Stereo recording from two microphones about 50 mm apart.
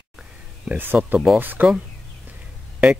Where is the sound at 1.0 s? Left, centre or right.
Right.